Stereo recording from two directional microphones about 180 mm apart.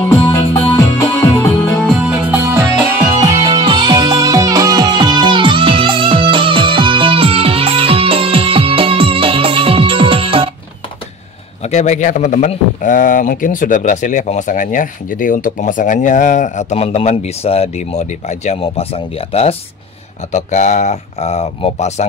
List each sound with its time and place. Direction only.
0.1 s music: 15° left (ahead or behind)
1.9 s music: 5° right (ahead or behind)
3.4 s music: 25° right (ahead or behind)
11.6 s a man's voice: 40° left (ahead or behind)